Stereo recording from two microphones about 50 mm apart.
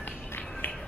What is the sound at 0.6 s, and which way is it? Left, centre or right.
Finger snapping, left.